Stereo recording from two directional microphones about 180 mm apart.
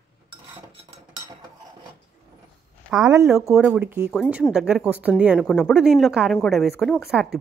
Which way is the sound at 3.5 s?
5° right (ahead or behind).